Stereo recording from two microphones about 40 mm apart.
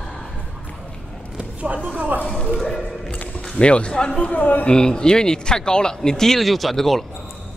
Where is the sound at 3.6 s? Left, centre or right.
Left.